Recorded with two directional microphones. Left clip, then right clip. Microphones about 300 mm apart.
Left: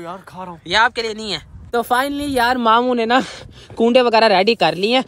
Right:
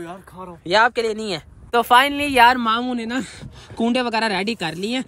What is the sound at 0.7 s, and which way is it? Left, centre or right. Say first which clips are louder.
Speech: left 1 dB; centre.